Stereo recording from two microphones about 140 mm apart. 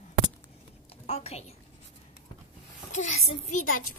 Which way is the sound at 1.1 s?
50° left (ahead or behind).